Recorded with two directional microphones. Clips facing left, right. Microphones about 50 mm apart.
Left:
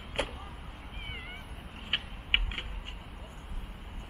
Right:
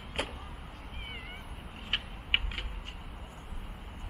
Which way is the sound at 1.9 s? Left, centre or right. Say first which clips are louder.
Left 1 dB; centre.